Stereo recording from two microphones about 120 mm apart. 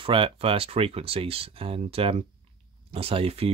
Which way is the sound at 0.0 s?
45° right (ahead or behind).